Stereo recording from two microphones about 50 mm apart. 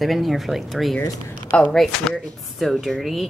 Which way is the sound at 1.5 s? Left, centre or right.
Left.